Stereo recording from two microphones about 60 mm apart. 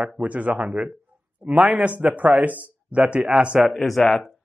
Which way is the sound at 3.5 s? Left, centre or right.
Centre.